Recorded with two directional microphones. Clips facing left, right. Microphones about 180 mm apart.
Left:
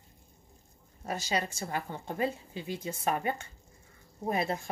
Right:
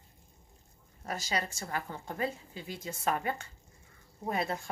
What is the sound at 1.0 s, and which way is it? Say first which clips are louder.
A woman's voice: left 2 dB; 25° left (ahead or behind).